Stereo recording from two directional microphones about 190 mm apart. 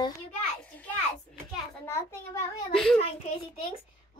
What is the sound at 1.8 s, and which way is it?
Speech, 15° left (ahead or behind).